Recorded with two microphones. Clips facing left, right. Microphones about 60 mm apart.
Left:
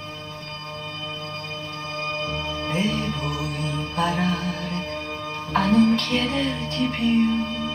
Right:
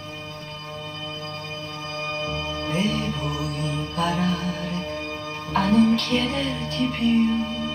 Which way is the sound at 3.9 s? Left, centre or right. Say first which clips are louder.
Left 1 dB; left.